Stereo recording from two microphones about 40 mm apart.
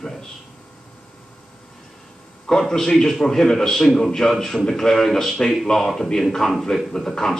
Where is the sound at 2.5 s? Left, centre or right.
Centre.